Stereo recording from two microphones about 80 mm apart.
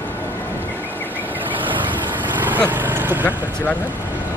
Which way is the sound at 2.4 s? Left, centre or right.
Right.